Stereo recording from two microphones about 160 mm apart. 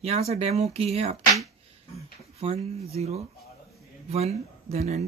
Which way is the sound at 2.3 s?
40° right (ahead or behind).